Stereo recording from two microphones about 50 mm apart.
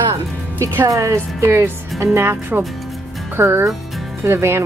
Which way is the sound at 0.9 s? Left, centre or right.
Right.